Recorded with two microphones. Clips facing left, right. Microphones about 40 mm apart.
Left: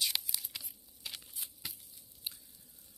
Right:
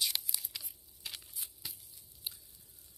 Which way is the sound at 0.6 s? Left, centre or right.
Centre.